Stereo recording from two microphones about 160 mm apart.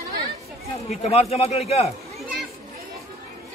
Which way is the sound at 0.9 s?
40° left (ahead or behind).